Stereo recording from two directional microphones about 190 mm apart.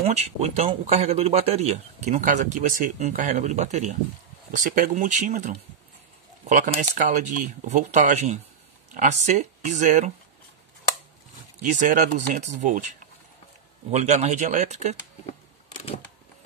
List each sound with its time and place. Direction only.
0.0 s speech: 35° right (ahead or behind)
11.6 s speech: 40° right (ahead or behind)